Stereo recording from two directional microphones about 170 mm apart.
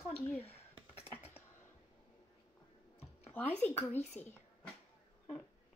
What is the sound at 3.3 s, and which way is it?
Speech, 10° left (ahead or behind).